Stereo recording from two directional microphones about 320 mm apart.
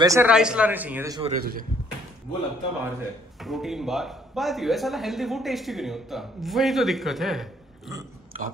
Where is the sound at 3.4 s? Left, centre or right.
Centre.